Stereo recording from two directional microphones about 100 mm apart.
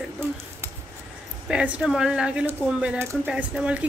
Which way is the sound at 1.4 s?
10° right (ahead or behind).